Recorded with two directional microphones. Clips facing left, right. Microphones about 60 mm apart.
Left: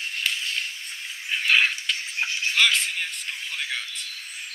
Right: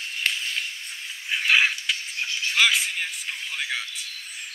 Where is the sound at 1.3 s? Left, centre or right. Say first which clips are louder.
Right 1 dB; centre.